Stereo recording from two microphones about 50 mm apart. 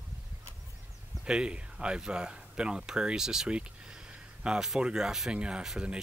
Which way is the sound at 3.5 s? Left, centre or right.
Right.